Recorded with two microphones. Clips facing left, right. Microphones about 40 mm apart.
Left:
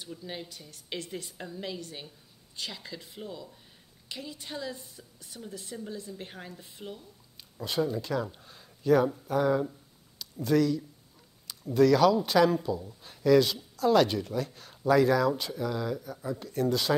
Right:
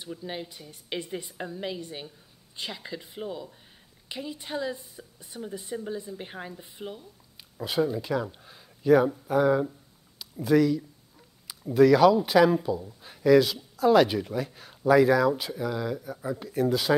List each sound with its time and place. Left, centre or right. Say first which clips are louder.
0.0 s speech: right 4 dB; centre